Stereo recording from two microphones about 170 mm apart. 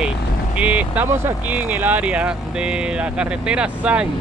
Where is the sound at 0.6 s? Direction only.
10° right (ahead or behind).